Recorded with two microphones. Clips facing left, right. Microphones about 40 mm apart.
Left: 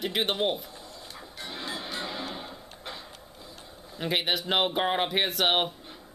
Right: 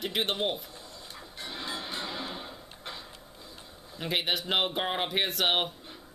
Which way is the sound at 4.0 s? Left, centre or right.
Centre.